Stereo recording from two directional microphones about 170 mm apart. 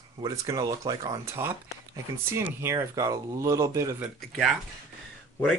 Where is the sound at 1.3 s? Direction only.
15° right (ahead or behind).